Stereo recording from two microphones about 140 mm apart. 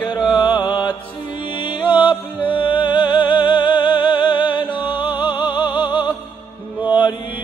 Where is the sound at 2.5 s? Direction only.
35° left (ahead or behind).